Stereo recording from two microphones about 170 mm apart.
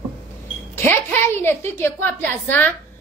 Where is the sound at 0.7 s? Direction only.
10° left (ahead or behind).